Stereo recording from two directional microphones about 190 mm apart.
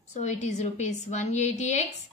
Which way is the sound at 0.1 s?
35° left (ahead or behind).